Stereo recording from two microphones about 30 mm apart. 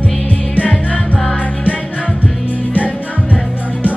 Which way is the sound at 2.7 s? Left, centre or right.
Left.